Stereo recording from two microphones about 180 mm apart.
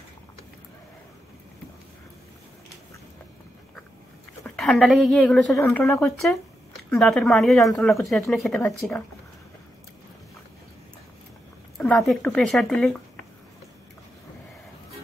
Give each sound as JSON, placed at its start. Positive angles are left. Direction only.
{"t": 4.6, "sound": "a woman's voice", "side_deg": 0}
{"t": 7.8, "sound": "speech", "side_deg": 15}
{"t": 8.3, "sound": "a woman's voice", "side_deg": 5}
{"t": 11.8, "sound": "speech", "side_deg": 5}